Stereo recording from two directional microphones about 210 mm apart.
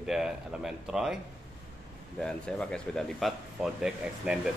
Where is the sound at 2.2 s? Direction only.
5° left (ahead or behind).